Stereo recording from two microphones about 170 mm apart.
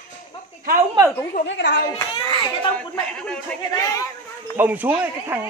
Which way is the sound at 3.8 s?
20° left (ahead or behind).